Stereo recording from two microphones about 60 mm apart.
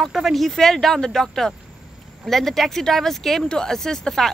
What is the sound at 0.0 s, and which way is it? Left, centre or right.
Speech, centre.